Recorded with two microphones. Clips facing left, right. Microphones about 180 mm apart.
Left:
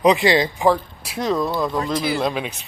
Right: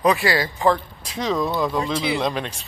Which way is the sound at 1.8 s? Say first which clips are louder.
Left 1 dB; 25° right (ahead or behind).